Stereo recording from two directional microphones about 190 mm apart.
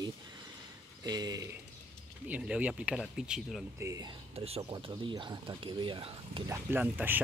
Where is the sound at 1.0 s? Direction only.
20° right (ahead or behind).